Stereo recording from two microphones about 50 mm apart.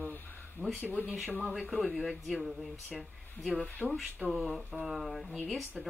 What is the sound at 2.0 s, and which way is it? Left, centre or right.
Speech, centre.